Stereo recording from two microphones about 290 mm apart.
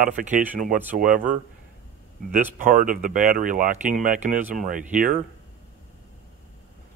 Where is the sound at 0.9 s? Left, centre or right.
Right.